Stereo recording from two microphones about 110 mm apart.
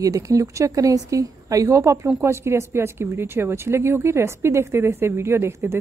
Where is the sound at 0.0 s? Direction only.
30° right (ahead or behind).